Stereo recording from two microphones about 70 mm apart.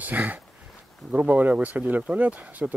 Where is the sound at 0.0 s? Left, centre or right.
Right.